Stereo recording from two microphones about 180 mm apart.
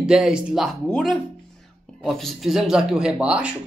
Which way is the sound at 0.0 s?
5° right (ahead or behind).